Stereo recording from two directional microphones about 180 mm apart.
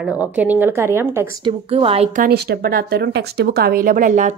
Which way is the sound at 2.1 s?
55° right (ahead or behind).